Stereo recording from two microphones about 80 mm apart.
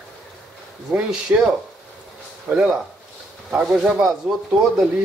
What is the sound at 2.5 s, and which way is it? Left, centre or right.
Speech, right.